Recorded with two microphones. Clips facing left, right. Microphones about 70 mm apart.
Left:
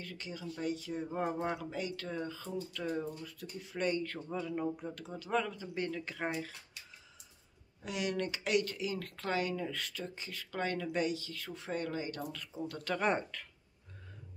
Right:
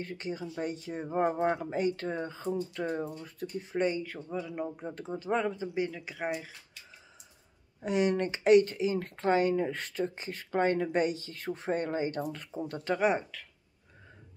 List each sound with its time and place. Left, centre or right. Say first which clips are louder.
0.0 s speech: right 7 dB; right
3.8 s speech: right 2 dB; centre
4.7 s speech: right 5 dB; right
5.9 s speech: right 2 dB; centre
7.8 s speech: right 8 dB; right
13.0 s speech: right 4 dB; centre